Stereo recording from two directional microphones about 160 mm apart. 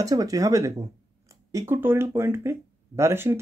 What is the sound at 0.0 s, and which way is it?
Speech, 20° right (ahead or behind).